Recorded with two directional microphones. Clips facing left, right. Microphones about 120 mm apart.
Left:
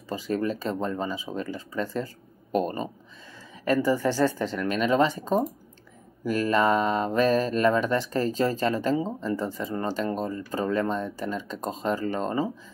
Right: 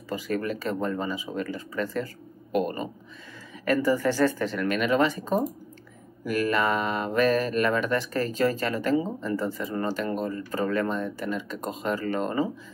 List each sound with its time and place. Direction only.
0.1 s speech: 25° left (ahead or behind)
2.5 s speech: 30° left (ahead or behind)